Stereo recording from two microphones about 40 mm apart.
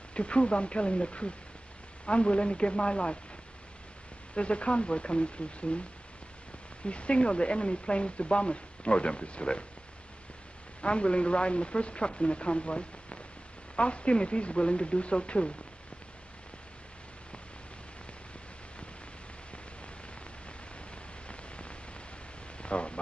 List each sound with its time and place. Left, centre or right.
0.1 s speech: left
4.4 s speech: left
6.8 s speech: left
10.8 s speech: left
21.3 s rain on surface: left
22.6 s a sound: left